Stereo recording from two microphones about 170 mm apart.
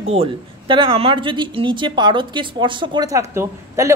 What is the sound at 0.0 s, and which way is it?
Speech, 35° right (ahead or behind).